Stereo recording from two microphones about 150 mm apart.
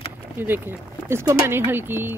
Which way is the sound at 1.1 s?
15° right (ahead or behind).